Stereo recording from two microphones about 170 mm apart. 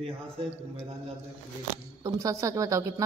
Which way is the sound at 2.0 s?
20° right (ahead or behind).